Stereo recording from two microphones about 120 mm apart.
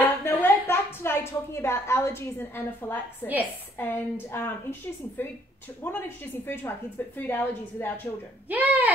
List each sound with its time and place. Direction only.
0.0 s a woman's voice: 20° left (ahead or behind)
8.5 s speech: 15° right (ahead or behind)